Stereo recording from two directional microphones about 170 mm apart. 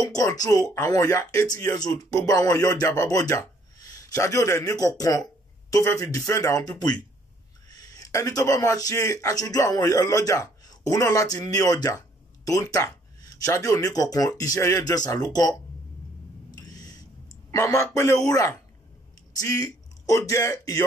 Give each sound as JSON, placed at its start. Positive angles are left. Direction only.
{"t": 0.0, "sound": "speech", "side_deg": 20}
{"t": 16.5, "sound": "a sound", "side_deg": 20}
{"t": 17.5, "sound": "a man's voice", "side_deg": 20}